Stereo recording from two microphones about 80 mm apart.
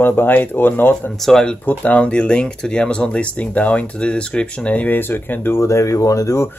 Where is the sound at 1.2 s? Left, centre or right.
Centre; by 6.5 s left.